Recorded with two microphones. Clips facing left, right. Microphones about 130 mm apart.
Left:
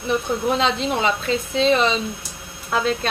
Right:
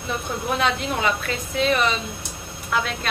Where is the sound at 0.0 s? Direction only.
25° left (ahead or behind).